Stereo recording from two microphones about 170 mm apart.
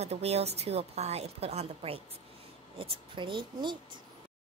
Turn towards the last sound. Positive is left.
turn(degrees=-30)  # may be behind; listen again after turning